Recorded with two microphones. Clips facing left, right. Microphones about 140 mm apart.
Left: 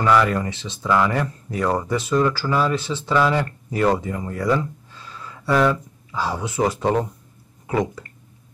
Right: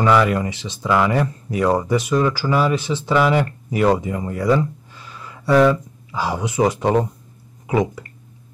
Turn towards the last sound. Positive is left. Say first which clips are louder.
# right 3 dB
turn(degrees=-10)  # may be behind; listen again after turning